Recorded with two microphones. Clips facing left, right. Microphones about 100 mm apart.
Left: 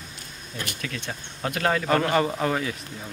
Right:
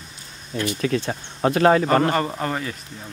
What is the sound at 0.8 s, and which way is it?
Speech, 35° right (ahead or behind).